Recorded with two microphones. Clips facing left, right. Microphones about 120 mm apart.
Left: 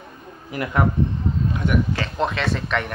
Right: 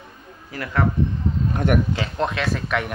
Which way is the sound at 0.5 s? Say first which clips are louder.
Left 2 dB; 20° left (ahead or behind).